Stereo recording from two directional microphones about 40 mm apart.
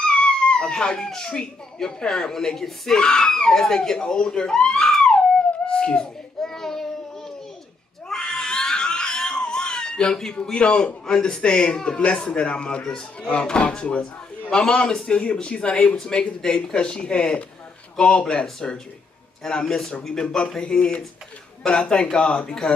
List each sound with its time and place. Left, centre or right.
0.0 s dog: left
1.3 s speech: left; by 3.0 s centre
3.0 s speech: centre
5.7 s a sound: left
6.4 s child singing: centre
8.1 s cat: centre
10.3 s speech: left
22.1 s speech: left